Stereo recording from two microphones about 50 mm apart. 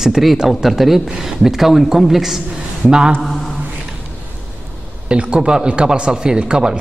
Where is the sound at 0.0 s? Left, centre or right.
Centre.